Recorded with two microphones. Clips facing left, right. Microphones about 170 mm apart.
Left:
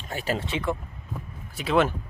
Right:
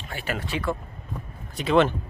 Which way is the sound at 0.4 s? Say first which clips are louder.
Even; 20° left (ahead or behind).